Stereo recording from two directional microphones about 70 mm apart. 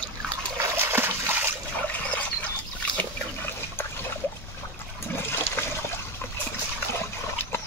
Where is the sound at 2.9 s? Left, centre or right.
Left.